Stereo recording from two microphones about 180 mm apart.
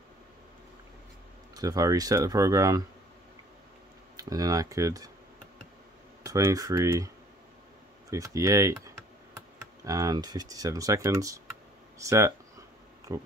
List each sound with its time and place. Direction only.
1.5 s speech: 20° right (ahead or behind)
4.2 s speech: 20° right (ahead or behind)
6.2 s speech: 20° right (ahead or behind)
8.1 s speech: 15° right (ahead or behind)
9.8 s speech: 20° right (ahead or behind)